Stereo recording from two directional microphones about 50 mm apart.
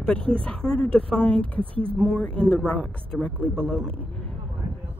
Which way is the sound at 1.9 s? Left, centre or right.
Centre.